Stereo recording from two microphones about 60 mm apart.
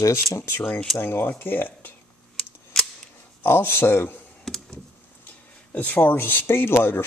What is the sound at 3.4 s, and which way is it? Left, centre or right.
Speech, left.